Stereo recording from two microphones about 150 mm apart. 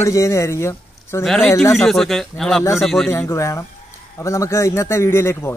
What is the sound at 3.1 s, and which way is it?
Speech, 15° left (ahead or behind).